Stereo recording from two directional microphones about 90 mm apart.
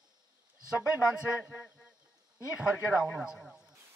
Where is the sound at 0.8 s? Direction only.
10° right (ahead or behind).